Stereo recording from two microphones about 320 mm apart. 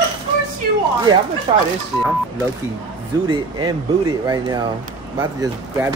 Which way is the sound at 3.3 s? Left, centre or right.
Centre.